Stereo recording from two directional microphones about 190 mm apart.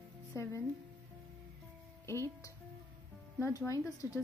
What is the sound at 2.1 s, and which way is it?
Speech, 15° left (ahead or behind).